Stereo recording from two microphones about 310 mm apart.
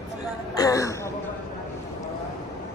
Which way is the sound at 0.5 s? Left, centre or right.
Centre.